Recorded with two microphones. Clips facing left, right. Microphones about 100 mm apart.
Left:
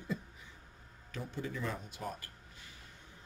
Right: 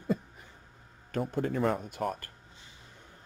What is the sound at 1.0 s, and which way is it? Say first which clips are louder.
Speech: right 10 dB; 55° right (ahead or behind).